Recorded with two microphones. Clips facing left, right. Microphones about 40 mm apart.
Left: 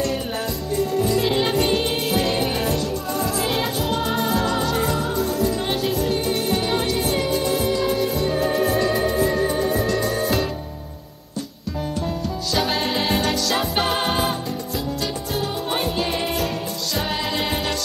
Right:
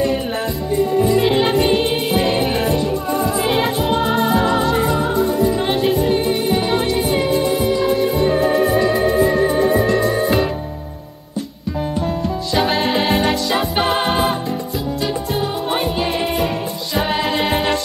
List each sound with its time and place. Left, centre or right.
0.7 s music: centre
12.5 s music: centre
16.9 s music: right